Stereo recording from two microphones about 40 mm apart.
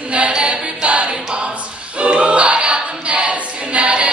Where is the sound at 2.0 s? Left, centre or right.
Right.